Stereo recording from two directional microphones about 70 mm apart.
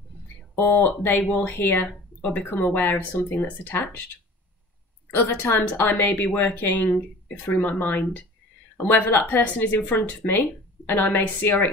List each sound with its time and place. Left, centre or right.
0.6 s speech: left
1.9 s speech: centre
2.5 s speech: left
5.1 s speech: left